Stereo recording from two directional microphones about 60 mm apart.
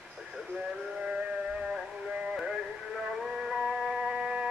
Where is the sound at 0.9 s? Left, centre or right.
Centre.